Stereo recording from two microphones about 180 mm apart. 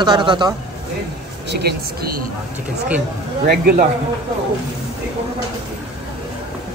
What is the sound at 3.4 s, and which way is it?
Speech, 55° right (ahead or behind).